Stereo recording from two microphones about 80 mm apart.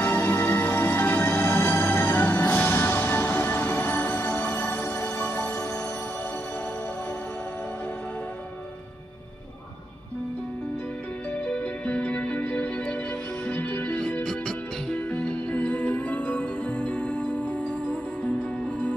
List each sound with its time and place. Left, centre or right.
0.0 s music: left
11.3 s music: centre
14.2 s music: centre